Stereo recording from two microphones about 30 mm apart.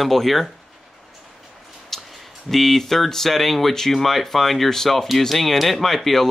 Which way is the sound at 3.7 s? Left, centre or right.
Centre.